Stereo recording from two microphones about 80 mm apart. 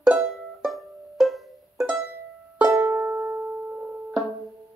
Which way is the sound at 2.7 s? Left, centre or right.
Right.